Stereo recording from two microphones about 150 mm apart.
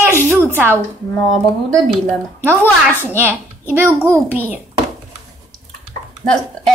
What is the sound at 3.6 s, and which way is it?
Speech, 15° right (ahead or behind).